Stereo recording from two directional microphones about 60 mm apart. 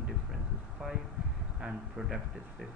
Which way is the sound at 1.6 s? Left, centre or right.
Centre.